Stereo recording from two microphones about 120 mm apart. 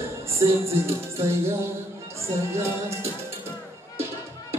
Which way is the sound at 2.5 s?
25° right (ahead or behind).